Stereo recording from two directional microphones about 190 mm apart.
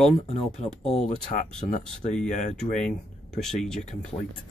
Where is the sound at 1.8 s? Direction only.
5° left (ahead or behind).